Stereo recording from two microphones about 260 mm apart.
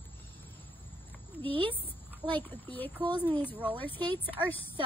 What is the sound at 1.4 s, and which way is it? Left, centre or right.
Speech, centre.